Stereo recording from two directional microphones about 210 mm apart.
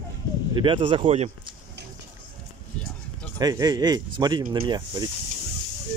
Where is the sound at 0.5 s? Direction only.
25° right (ahead or behind).